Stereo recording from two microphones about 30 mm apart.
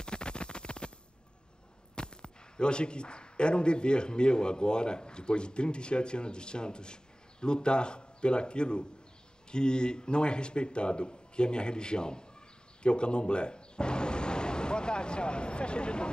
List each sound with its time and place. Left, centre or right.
0.0 s scratch: left
2.0 s a man's voice: left